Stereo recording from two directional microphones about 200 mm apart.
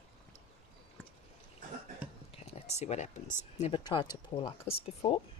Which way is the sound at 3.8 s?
20° left (ahead or behind).